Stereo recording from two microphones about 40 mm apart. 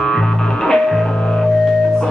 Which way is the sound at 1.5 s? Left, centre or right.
Centre.